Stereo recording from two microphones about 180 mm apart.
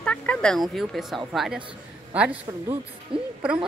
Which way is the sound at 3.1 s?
30° right (ahead or behind).